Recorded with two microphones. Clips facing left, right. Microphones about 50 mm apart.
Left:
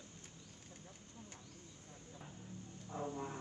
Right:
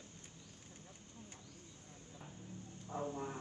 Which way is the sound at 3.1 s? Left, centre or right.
Right.